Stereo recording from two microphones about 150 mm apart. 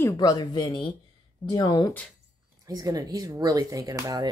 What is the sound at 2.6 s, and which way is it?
Speech, 25° right (ahead or behind).